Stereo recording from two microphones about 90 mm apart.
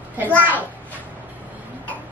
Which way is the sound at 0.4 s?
20° right (ahead or behind).